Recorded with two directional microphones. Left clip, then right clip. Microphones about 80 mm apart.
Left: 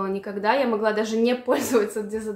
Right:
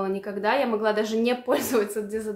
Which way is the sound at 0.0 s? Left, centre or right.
Centre.